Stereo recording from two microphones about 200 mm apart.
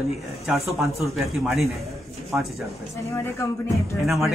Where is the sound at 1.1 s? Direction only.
Centre (ahead or behind).